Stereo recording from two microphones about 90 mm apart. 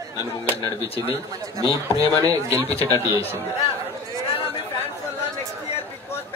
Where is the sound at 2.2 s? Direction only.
40° right (ahead or behind).